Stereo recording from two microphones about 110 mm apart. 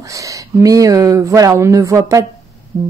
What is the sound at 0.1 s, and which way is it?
Speech, 30° right (ahead or behind).